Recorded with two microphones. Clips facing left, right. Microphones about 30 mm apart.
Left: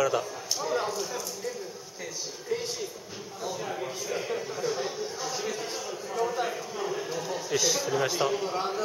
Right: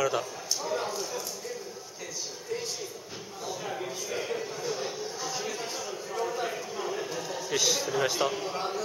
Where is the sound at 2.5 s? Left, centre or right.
Left.